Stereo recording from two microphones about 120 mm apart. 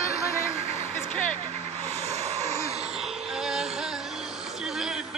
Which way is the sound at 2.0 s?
65° right (ahead or behind).